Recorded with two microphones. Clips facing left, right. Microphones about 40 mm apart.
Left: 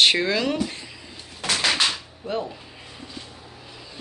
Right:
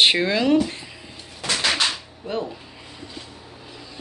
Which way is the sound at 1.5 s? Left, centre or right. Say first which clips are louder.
Even; centre.